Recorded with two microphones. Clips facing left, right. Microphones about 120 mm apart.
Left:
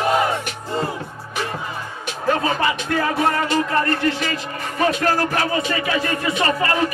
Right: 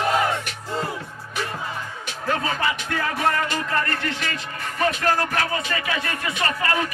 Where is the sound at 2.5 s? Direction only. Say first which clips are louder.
Left 4 dB; 30° left (ahead or behind).